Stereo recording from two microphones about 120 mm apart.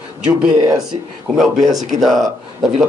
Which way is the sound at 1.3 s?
5° left (ahead or behind).